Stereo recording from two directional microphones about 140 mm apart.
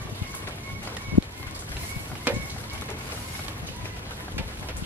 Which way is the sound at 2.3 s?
15° right (ahead or behind).